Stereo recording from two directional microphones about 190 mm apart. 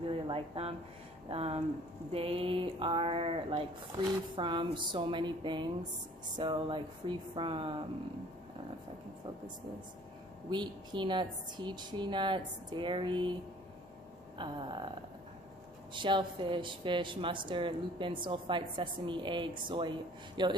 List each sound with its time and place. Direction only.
0.0 s a sound: 30° right (ahead or behind)
1.3 s speech: 30° right (ahead or behind)
10.5 s speech: 25° right (ahead or behind)
14.4 s speech: 25° right (ahead or behind)
15.9 s speech: 25° right (ahead or behind)